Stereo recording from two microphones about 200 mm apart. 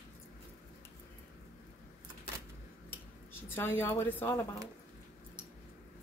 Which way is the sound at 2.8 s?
10° left (ahead or behind).